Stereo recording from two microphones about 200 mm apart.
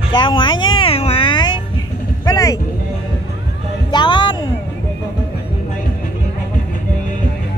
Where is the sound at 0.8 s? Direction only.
30° left (ahead or behind).